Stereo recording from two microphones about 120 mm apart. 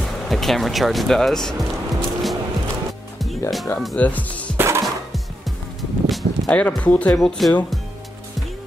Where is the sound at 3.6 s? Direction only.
10° left (ahead or behind).